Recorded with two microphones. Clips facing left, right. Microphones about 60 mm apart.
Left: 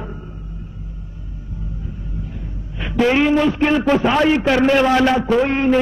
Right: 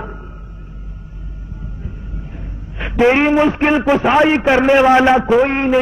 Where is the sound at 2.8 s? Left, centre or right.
Right.